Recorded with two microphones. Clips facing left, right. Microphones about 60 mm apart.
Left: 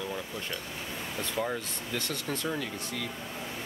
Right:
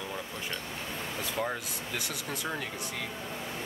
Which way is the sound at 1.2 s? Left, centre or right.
Centre.